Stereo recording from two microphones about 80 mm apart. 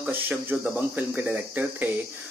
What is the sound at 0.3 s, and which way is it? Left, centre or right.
Speech, right.